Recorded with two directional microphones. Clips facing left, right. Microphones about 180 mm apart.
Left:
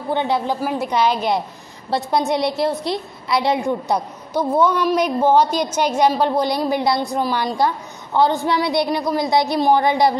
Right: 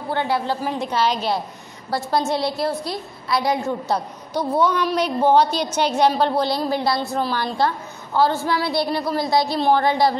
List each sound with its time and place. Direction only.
0.1 s a woman's voice: 20° left (ahead or behind)